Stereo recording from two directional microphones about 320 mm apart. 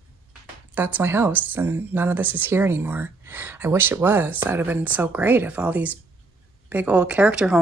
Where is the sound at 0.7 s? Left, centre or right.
Centre.